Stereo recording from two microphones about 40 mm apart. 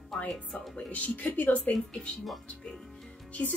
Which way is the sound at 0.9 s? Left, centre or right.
Left.